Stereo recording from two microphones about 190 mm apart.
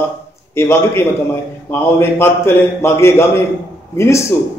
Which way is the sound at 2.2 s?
15° left (ahead or behind).